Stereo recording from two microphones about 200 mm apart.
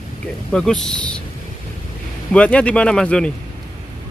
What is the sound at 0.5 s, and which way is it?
Speech, 5° left (ahead or behind).